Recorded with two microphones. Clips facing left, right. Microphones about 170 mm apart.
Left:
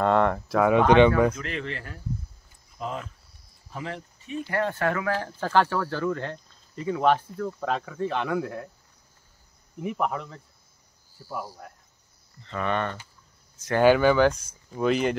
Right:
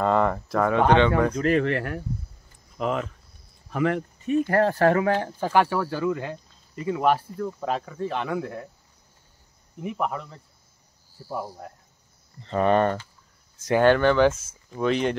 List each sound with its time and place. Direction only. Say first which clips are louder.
0.0 s a sound: even; centre (ahead or behind)
0.7 s speech: left 2 dB; 15° left (ahead or behind)
1.3 s speech: right 11 dB; 45° right (ahead or behind); by 3.1 s 75° right (ahead or behind)
3.7 s speech: right 11 dB; 65° right (ahead or behind); by 8.6 s centre (ahead or behind)
9.8 s speech: even; centre (ahead or behind)
11.2 s speech: right 3 dB; 20° right (ahead or behind)
12.4 s speech: right 7 dB; 35° right (ahead or behind)
13.7 s speech: even; 5° left (ahead or behind)